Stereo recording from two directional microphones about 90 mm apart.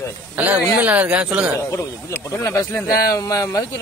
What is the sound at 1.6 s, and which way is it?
Speech, 30° left (ahead or behind).